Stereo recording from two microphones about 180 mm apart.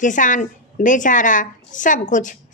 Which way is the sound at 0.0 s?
45° left (ahead or behind).